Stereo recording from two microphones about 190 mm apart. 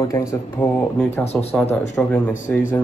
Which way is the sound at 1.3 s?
5° left (ahead or behind).